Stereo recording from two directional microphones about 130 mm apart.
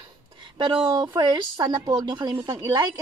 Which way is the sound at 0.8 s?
30° right (ahead or behind).